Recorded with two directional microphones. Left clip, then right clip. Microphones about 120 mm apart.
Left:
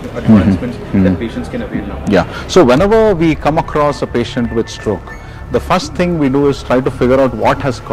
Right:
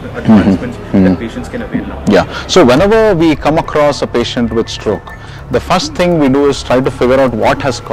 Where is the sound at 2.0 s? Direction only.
35° right (ahead or behind).